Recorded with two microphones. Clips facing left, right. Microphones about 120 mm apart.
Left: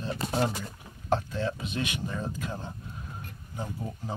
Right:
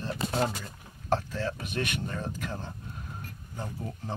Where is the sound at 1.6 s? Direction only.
60° right (ahead or behind).